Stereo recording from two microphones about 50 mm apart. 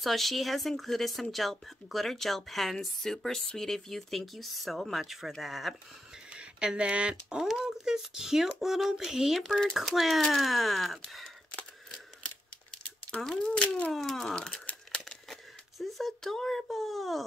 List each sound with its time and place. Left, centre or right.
0.0 s speech: centre
6.3 s speech: centre
13.2 s a child's voice: centre
14.2 s a child's voice: centre
15.8 s speech: centre